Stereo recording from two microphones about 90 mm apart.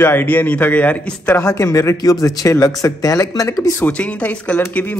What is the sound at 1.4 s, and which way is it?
Speech, 40° left (ahead or behind).